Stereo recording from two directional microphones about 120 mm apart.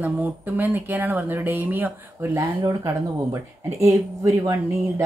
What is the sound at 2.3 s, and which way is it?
Speech, 25° right (ahead or behind).